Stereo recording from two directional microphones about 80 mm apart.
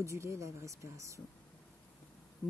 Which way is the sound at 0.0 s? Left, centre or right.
Right.